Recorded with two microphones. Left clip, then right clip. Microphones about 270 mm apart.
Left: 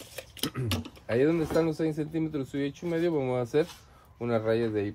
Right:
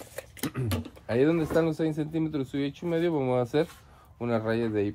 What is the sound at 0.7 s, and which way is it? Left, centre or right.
Tick-tock, centre.